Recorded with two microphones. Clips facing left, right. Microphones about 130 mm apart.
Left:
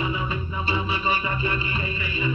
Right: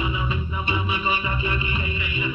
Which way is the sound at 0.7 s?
30° left (ahead or behind).